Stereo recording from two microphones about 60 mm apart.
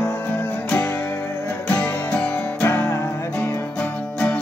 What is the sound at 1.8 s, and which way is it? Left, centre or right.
Music, centre.